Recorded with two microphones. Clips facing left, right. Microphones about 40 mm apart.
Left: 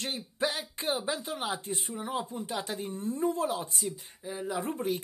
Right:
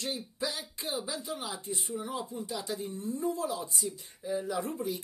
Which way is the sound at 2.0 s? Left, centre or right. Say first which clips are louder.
Left 3 dB; left.